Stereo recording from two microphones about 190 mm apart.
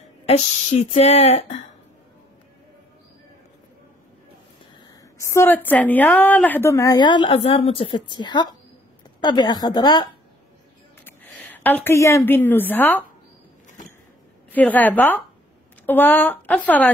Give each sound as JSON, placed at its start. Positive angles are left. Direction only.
{"t": 0.2, "sound": "speech", "side_deg": 35}
{"t": 5.2, "sound": "a woman's voice", "side_deg": 15}
{"t": 11.1, "sound": "a woman's voice", "side_deg": 10}
{"t": 14.5, "sound": "a woman's voice", "side_deg": 10}